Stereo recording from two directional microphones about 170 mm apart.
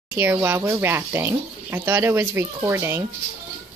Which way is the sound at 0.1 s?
15° right (ahead or behind).